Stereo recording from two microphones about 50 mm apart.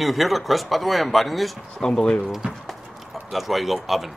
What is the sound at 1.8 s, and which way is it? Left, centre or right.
Speech, centre.